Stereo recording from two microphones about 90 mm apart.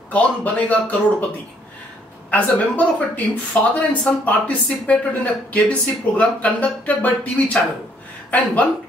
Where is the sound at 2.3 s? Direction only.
15° left (ahead or behind).